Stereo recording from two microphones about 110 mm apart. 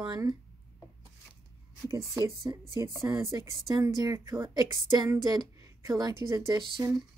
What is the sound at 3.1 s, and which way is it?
Speech, 45° right (ahead or behind).